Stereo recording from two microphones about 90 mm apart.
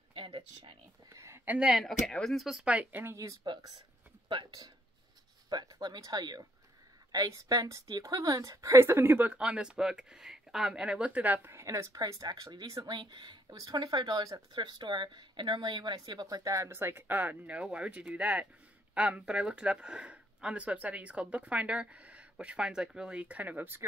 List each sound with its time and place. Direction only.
0.1 s speech: 80° right
1.1 s speech: 30° right (ahead or behind)
1.4 s speech: 15° right (ahead or behind)
1.7 s speech: centre (ahead or behind); by 3.2 s 20° right (ahead or behind)
3.4 s a woman's voice: 50° right (ahead or behind); by 11.5 s 20° right (ahead or behind)
11.5 s speech: 35° right (ahead or behind)